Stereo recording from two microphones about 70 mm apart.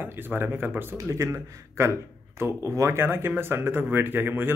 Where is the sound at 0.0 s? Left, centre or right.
Right.